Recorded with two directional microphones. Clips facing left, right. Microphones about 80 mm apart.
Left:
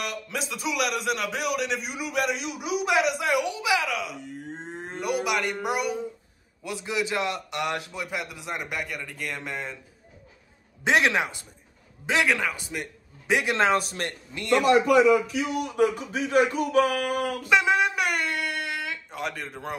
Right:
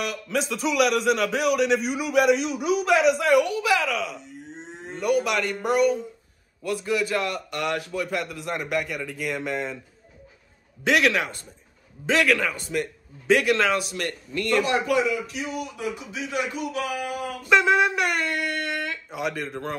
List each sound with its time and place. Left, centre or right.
0.0 s a man's voice: centre
4.2 s livestock: left
4.9 s a man's voice: centre
10.8 s a man's voice: left
12.1 s speech: centre
13.3 s a man's voice: left
13.7 s a man's voice: left
14.0 s a man's voice: left
15.7 s speech: left
17.5 s speech: centre